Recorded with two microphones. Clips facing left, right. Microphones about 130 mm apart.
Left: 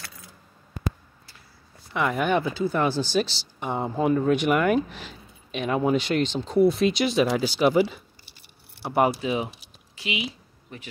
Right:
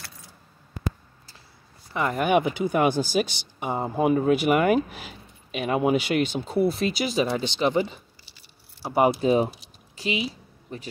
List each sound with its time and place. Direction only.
2.0 s speech: centre (ahead or behind)
2.3 s speech: 15° right (ahead or behind); by 8.0 s 5° left (ahead or behind)
9.2 s speech: 40° right (ahead or behind)
9.9 s a sound: 35° right (ahead or behind)